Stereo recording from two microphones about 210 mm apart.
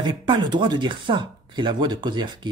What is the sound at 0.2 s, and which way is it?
Speech, 20° right (ahead or behind).